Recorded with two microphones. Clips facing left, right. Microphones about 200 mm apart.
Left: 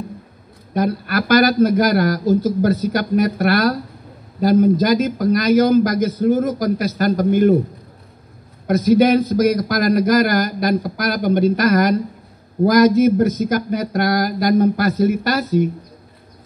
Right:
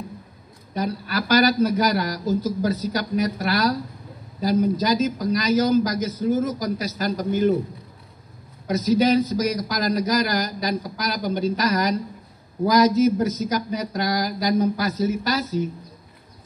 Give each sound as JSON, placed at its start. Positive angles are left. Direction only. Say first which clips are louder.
{"t": 0.7, "sound": "a man's voice", "louder": "left 6 dB", "side_deg": 55}
{"t": 8.6, "sound": "a man's voice", "louder": "left 6 dB", "side_deg": 55}